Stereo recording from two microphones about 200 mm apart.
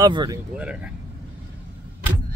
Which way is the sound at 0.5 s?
5° right (ahead or behind).